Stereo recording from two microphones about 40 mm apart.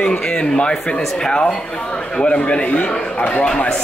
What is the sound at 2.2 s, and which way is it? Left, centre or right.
A man's voice, left.